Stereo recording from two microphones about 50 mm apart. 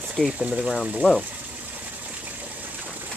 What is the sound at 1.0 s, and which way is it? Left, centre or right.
Speech, right.